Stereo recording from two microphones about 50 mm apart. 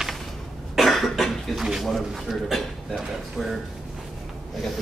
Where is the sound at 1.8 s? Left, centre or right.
Centre.